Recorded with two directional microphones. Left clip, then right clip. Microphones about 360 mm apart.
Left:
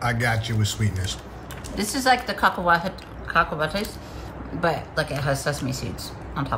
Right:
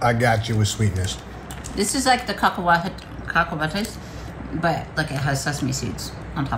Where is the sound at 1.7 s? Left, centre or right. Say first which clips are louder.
Right 1 dB; centre.